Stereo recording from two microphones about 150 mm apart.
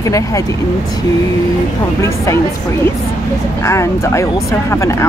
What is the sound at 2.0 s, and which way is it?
Speech, 20° left (ahead or behind).